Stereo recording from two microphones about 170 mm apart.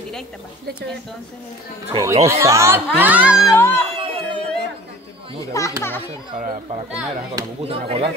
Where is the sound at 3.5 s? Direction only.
15° left (ahead or behind).